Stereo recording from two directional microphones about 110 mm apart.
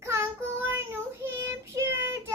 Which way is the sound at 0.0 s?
25° right (ahead or behind).